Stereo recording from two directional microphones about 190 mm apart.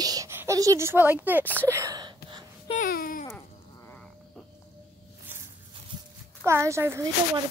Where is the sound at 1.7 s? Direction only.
15° right (ahead or behind).